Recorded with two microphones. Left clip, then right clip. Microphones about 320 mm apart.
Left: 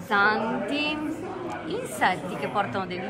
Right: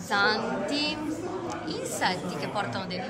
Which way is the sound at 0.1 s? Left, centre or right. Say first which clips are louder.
Left 3 dB; centre.